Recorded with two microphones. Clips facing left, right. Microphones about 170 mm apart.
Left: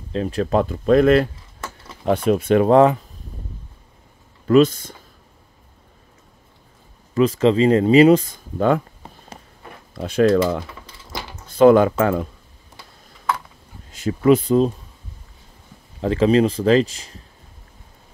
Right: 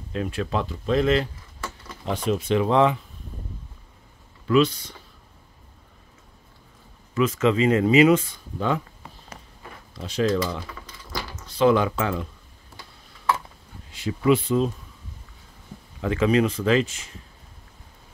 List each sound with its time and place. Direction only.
0.1 s speech: 35° left (ahead or behind)
4.5 s speech: 45° left (ahead or behind)
7.2 s speech: 30° left (ahead or behind)
13.9 s speech: 45° left (ahead or behind)
16.0 s speech: 35° left (ahead or behind)